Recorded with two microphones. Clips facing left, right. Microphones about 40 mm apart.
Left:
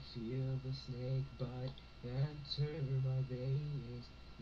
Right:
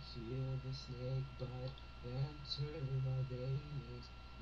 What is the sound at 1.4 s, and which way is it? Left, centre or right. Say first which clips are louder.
Speech: left 2 dB; centre.